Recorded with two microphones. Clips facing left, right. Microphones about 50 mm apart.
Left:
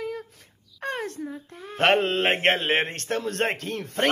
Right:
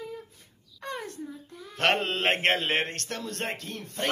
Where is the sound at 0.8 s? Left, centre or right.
Left.